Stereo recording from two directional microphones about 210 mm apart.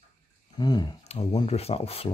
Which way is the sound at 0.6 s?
20° left (ahead or behind).